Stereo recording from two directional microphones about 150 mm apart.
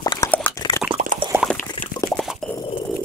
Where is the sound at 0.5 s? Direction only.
20° left (ahead or behind).